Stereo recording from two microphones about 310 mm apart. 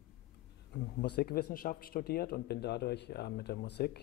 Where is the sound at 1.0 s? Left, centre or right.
Left.